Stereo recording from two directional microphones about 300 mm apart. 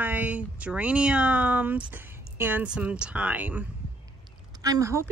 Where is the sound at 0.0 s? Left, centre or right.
Centre.